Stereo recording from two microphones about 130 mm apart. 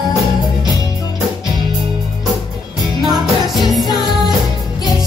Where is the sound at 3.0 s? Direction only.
Centre (ahead or behind).